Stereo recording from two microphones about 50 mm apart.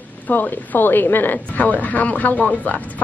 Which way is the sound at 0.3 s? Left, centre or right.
Left.